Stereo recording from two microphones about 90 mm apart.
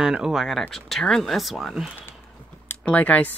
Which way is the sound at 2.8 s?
15° left (ahead or behind).